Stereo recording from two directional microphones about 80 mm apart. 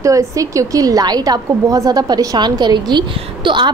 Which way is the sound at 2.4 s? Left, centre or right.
Right.